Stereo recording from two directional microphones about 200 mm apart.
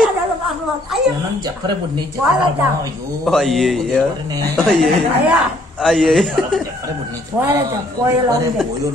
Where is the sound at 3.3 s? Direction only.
Centre (ahead or behind).